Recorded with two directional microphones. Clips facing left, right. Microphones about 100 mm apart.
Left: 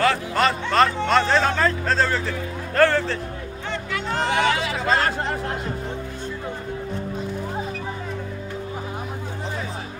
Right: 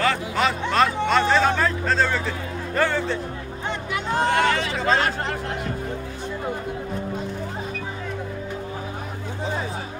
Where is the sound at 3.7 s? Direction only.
20° right (ahead or behind).